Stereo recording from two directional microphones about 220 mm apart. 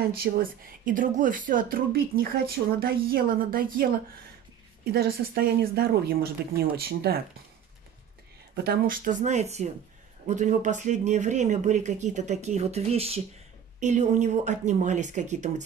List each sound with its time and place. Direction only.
0.2 s a woman's voice: 40° right (ahead or behind)
8.6 s a woman's voice: 40° right (ahead or behind)